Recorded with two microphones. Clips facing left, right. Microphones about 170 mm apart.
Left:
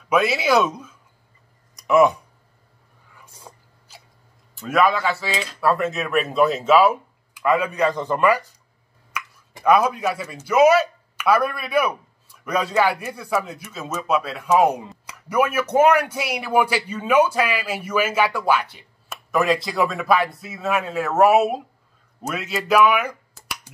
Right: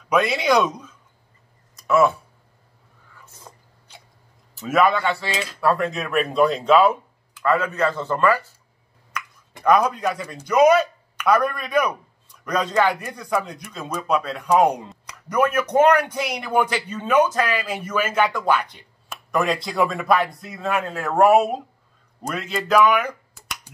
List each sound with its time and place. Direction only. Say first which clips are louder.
0.1 s speech: even; 5° left (ahead or behind)
3.3 s a sound: left 1 dB; 10° left (ahead or behind)
4.6 s speech: even; centre (ahead or behind)